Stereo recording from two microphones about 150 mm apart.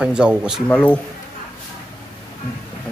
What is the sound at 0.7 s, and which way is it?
Speech, 10° left (ahead or behind).